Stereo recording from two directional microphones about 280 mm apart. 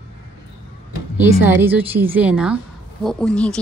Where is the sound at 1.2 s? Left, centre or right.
Centre.